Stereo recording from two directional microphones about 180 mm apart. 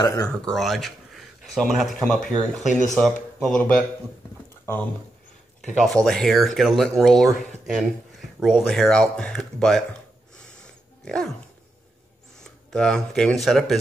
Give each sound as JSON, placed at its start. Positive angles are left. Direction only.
{"t": 0.0, "sound": "speech", "side_deg": 15}
{"t": 0.5, "sound": "a man's voice", "side_deg": 0}
{"t": 6.0, "sound": "speech", "side_deg": 0}
{"t": 10.3, "sound": "dog", "side_deg": 5}
{"t": 12.4, "sound": "speech", "side_deg": 5}